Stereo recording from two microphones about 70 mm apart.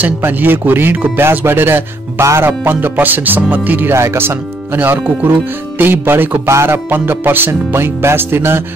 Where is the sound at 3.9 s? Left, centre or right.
Right.